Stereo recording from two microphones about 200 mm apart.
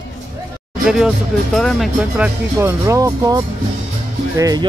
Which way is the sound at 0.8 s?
Centre (ahead or behind).